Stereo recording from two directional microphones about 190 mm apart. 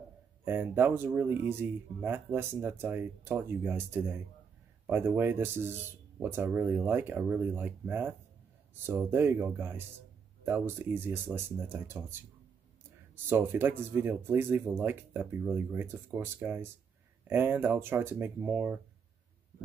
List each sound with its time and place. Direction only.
0.5 s speech: 10° right (ahead or behind)
13.3 s speech: 10° right (ahead or behind)